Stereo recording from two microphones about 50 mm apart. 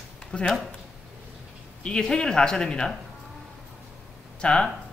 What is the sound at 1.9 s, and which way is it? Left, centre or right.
Speech, centre.